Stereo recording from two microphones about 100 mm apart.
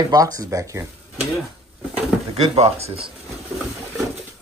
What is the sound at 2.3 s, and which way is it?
Speech, 90° right.